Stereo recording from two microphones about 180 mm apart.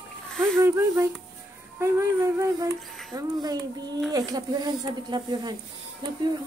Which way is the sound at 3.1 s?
20° right (ahead or behind).